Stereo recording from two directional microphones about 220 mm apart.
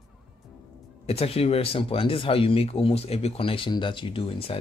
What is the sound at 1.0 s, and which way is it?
Speech, 25° left (ahead or behind).